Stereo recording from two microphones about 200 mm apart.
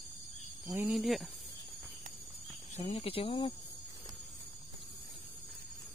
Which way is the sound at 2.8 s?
30° left (ahead or behind).